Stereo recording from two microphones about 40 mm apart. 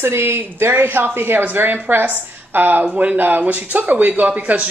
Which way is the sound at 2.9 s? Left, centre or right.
Right.